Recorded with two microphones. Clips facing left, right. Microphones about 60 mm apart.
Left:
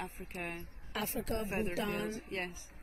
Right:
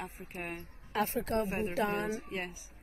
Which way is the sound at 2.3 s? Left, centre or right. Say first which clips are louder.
Right 1 dB; centre.